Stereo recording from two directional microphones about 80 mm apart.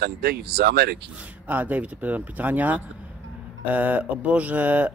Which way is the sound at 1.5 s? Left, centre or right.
Right.